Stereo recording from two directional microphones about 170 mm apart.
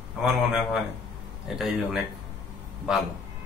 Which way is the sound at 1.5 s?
Centre (ahead or behind).